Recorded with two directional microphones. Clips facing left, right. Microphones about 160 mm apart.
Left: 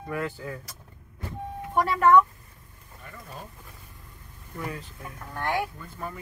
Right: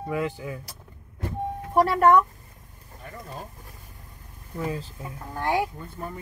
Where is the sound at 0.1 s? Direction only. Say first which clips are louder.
Right 3 dB; 15° right (ahead or behind).